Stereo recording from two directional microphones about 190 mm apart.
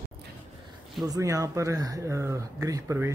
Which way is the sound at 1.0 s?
20° right (ahead or behind).